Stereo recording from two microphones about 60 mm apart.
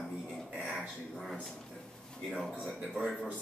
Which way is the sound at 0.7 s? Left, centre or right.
Centre.